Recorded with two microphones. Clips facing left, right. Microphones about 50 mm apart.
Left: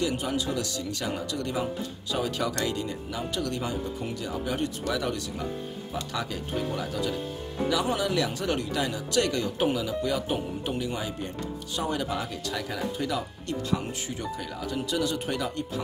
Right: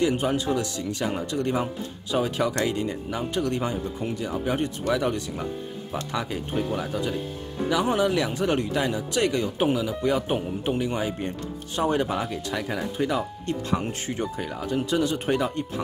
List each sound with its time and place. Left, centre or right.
0.0 s speech: right